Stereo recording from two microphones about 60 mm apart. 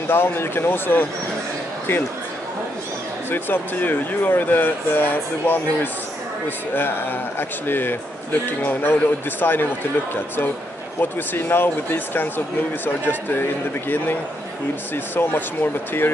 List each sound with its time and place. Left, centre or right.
0.1 s a man's voice: left
3.3 s a man's voice: left
6.7 s a man's voice: left
11.0 s a man's voice: left
15.1 s a man's voice: left